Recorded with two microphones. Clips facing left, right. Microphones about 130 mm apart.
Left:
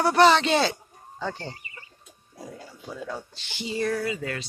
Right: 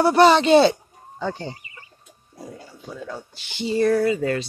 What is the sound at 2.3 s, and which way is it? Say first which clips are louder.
Speech: right 2 dB; centre (ahead or behind).